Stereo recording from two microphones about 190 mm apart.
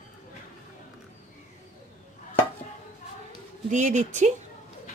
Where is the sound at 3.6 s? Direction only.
40° right (ahead or behind).